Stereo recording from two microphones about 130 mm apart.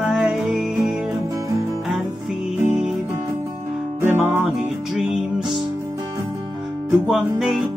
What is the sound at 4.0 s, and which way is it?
Music, 15° right (ahead or behind).